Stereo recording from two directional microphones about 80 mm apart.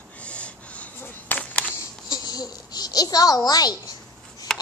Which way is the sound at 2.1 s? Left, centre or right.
Left.